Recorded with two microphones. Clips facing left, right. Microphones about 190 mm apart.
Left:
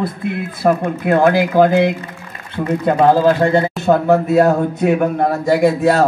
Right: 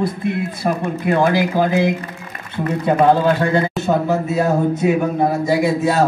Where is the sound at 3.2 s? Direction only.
30° left (ahead or behind).